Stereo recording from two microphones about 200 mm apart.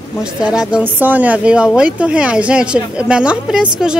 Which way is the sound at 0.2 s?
5° right (ahead or behind).